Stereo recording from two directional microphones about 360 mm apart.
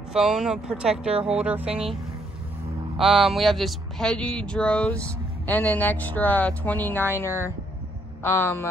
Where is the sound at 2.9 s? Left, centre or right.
Centre.